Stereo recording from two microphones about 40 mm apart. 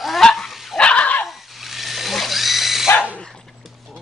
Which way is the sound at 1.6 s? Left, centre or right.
Centre.